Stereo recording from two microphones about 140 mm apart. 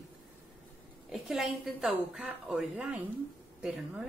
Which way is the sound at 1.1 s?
Centre (ahead or behind).